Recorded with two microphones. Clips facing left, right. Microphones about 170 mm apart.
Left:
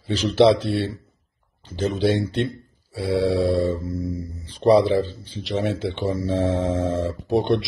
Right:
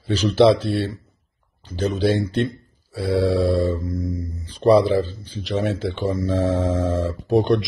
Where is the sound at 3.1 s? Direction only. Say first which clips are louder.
Right 1 dB; 45° right (ahead or behind).